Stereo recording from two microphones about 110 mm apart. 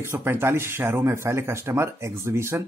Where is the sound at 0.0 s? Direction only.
20° right (ahead or behind).